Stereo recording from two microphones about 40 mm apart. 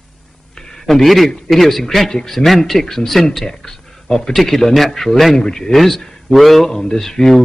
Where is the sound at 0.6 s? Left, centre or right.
Centre.